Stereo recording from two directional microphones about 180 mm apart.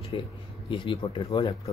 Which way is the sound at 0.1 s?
30° left (ahead or behind).